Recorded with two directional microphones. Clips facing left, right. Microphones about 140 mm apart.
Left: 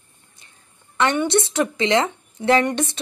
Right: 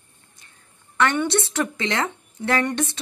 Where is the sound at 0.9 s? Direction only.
20° left (ahead or behind).